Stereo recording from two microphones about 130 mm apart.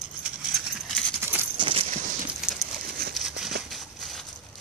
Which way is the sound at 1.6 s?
45° right (ahead or behind).